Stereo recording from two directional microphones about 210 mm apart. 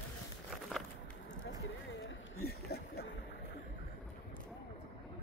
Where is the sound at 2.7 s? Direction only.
50° left (ahead or behind).